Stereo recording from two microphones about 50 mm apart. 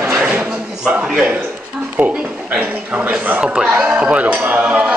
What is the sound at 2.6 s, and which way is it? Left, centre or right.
Speech, right.